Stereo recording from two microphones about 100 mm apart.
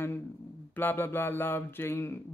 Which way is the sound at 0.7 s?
20° left (ahead or behind).